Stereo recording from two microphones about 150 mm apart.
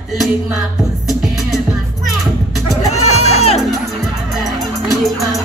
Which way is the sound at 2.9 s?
45° left (ahead or behind).